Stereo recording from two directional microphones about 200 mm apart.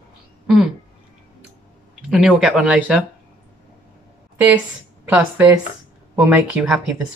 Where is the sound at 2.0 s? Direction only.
Centre (ahead or behind).